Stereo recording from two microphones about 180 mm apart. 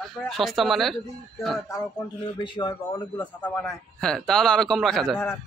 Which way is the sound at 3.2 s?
10° left (ahead or behind).